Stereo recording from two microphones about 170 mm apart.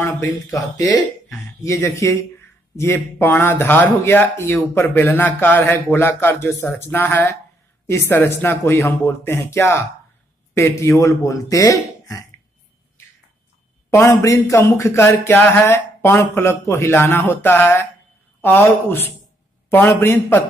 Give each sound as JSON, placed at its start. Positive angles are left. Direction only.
{"t": 0.5, "sound": "a man's voice", "side_deg": 20}
{"t": 13.8, "sound": "a man's voice", "side_deg": 15}